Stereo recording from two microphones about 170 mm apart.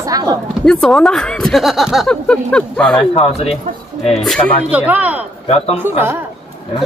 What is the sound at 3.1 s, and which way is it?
Speech, 35° left (ahead or behind).